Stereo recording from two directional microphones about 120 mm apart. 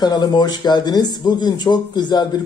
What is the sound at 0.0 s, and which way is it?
Speech, 35° left (ahead or behind).